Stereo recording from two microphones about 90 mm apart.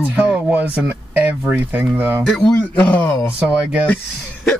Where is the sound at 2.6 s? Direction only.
15° left (ahead or behind).